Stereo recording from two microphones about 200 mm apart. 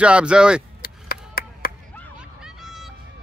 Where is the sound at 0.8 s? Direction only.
45° left (ahead or behind).